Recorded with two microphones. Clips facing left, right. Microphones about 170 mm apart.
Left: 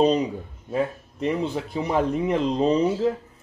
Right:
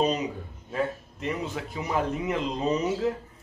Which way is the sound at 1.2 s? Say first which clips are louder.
Left 6 dB; 35° left (ahead or behind).